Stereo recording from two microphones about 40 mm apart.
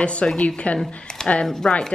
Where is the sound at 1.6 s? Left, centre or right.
Left.